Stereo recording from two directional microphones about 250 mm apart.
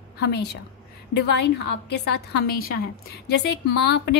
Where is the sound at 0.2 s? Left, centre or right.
Left.